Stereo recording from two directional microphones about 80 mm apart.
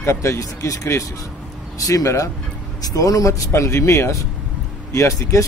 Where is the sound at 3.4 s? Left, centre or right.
Left.